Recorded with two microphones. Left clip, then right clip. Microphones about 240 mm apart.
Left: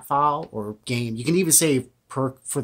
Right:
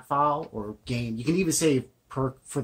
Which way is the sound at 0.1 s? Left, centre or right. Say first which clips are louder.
Left 4 dB; left.